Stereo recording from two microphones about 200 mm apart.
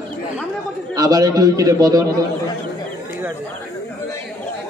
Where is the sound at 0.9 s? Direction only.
20° right (ahead or behind).